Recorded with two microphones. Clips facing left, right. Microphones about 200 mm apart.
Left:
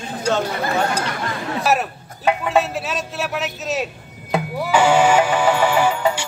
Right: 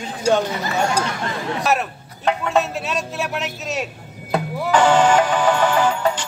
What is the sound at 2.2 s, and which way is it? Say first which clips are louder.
A man's voice: left 1 dB; 5° left (ahead or behind).